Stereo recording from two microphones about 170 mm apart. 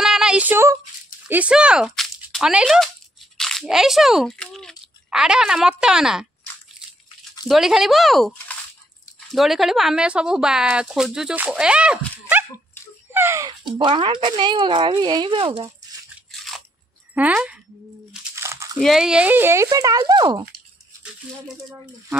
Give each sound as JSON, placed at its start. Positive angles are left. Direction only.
{"t": 0.0, "sound": "a sound", "side_deg": -5}
{"t": 1.2, "sound": "speech", "side_deg": -5}
{"t": 7.4, "sound": "a woman's voice", "side_deg": 0}
{"t": 13.1, "sound": "speech", "side_deg": -15}
{"t": 13.8, "sound": "speech", "side_deg": -30}
{"t": 16.3, "sound": "biting", "side_deg": 0}
{"t": 17.1, "sound": "speech", "side_deg": -10}
{"t": 18.3, "sound": "crumpling", "side_deg": -15}
{"t": 18.8, "sound": "speech", "side_deg": 0}